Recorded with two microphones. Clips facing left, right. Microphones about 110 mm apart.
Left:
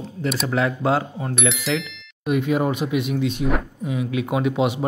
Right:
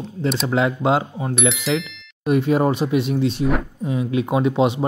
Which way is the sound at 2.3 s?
35° right (ahead or behind).